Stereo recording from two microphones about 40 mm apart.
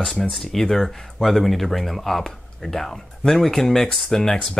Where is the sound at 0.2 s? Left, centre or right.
Centre.